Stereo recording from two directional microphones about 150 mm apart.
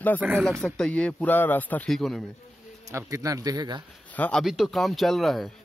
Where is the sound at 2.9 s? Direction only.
20° right (ahead or behind).